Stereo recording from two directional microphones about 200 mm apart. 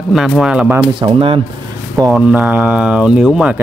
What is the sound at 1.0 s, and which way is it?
Speech, 25° right (ahead or behind).